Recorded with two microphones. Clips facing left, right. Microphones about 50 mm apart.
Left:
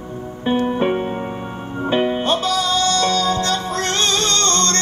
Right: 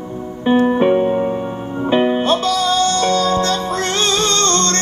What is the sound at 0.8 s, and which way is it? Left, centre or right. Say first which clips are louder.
Music: right 6 dB; centre.